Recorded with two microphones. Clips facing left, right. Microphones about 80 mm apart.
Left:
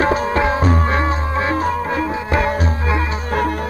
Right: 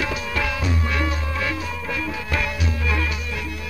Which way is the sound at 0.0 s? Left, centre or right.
Left.